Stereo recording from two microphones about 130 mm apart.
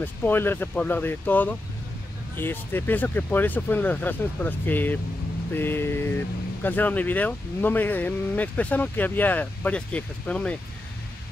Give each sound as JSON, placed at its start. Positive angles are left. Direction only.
{"t": 0.0, "sound": "speech", "side_deg": 15}